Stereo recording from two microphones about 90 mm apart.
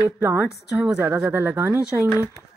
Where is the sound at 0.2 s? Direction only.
25° right (ahead or behind).